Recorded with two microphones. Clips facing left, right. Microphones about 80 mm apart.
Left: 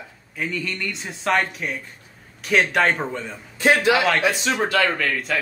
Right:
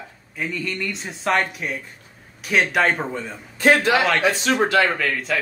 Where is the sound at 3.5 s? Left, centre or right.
Right.